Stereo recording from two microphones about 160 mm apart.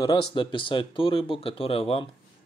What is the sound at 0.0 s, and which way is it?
Speech, 30° left (ahead or behind).